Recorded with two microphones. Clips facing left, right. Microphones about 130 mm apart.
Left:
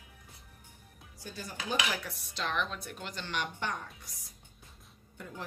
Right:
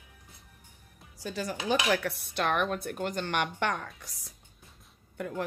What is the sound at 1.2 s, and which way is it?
Speech, 90° right.